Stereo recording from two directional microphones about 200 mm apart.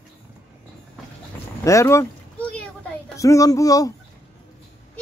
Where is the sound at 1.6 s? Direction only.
15° left (ahead or behind).